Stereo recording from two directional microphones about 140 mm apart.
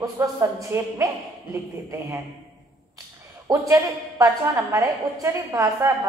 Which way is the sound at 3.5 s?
25° right (ahead or behind).